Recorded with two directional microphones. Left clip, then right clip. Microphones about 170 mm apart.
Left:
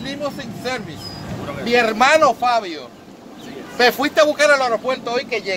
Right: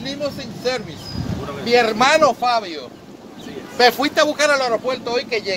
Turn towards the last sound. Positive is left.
turn(degrees=-10)  # may be behind; listen again after turning